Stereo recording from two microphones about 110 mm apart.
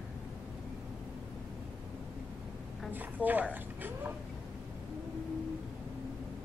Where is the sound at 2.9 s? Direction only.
15° right (ahead or behind).